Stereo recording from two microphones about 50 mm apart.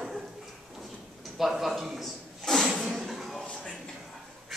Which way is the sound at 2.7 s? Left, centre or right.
Centre.